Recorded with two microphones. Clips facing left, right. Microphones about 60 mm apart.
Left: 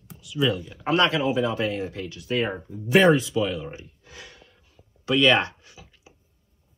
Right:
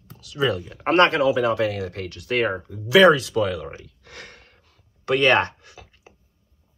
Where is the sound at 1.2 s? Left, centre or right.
Right.